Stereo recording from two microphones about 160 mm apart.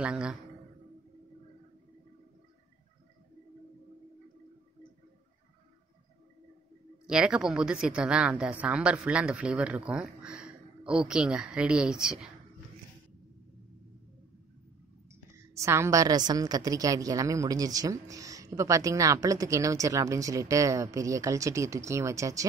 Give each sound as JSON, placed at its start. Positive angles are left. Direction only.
{"t": 0.0, "sound": "a woman's voice", "side_deg": -5}
{"t": 7.1, "sound": "a woman's voice", "side_deg": -5}
{"t": 15.5, "sound": "a woman's voice", "side_deg": -15}